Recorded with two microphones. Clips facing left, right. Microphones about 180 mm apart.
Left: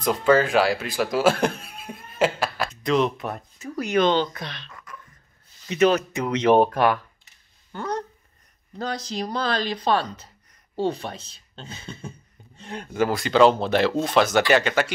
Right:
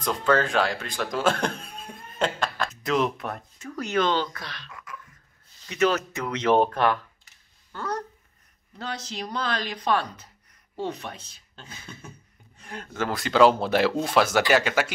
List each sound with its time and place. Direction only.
0.0 s speech: 10° left (ahead or behind)
2.8 s speech: 5° right (ahead or behind); by 4.6 s 20° left (ahead or behind)
4.6 s a sound: 10° right (ahead or behind)
5.7 s speech: 20° left (ahead or behind)
8.7 s speech: 40° left (ahead or behind); by 13.1 s 15° left (ahead or behind)
13.1 s speech: centre (ahead or behind)